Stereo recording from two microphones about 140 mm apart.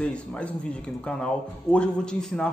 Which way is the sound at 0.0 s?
10° left (ahead or behind).